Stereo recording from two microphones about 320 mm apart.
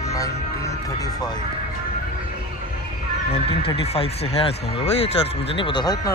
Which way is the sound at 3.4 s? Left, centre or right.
Centre.